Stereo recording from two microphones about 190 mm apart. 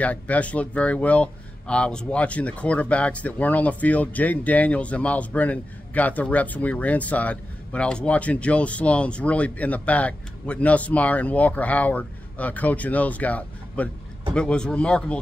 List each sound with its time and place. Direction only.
0.0 s speech: 5° left (ahead or behind)